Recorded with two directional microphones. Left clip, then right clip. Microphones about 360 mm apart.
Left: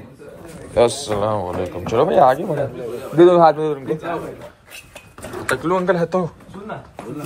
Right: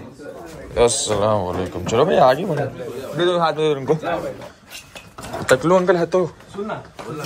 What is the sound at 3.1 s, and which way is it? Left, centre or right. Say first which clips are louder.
Speech: left 7 dB; centre.